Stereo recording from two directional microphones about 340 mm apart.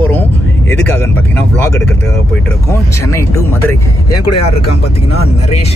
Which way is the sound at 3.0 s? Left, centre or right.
Centre.